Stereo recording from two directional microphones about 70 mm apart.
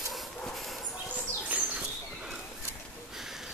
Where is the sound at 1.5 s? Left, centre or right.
Centre.